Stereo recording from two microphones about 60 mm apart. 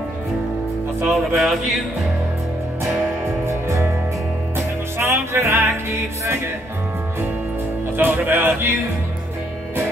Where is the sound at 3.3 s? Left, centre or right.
Right.